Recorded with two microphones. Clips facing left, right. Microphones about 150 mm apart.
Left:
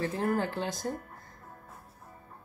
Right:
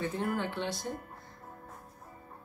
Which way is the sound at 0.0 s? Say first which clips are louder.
Left 3 dB; 35° left (ahead or behind).